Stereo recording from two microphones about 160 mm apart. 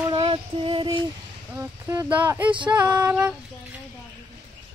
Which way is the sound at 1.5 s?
15° right (ahead or behind).